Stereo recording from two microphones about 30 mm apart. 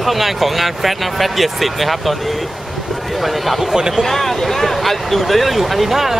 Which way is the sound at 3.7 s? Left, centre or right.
Centre.